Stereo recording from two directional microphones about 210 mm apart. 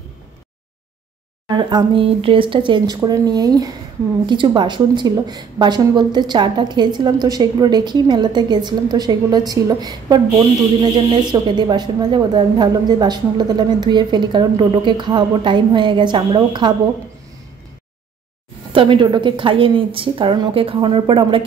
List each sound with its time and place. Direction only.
1.5 s a woman's voice: 20° right (ahead or behind)
18.7 s a woman's voice: 25° right (ahead or behind)